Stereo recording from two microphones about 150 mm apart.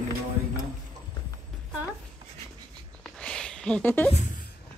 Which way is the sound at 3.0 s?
5° left (ahead or behind).